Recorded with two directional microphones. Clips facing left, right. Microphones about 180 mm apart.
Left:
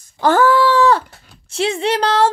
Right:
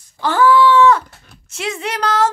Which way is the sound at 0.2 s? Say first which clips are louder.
Even; 45° left (ahead or behind).